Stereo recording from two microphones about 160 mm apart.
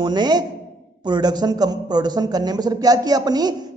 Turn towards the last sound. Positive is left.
turn(degrees=-25)  # may be behind; listen again after turning